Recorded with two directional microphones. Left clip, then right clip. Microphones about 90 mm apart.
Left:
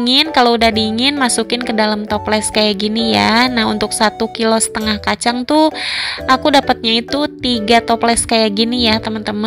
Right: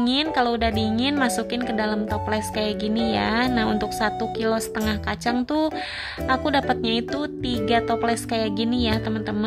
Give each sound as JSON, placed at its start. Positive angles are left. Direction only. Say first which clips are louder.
{"t": 0.0, "sound": "a woman's voice", "louder": "left 10 dB", "side_deg": 45}